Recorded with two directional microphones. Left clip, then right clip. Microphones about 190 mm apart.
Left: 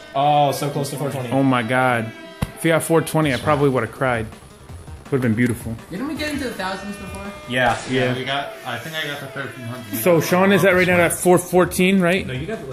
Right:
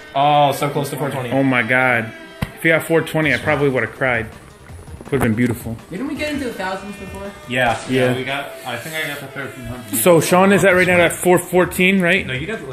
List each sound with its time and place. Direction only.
0.1 s speech: 5° right (ahead or behind); by 4.3 s 15° left (ahead or behind)
5.1 s speech: centre (ahead or behind)
8.3 s speech: centre (ahead or behind)
10.0 s speech: 15° right (ahead or behind)
10.5 s speech: centre (ahead or behind)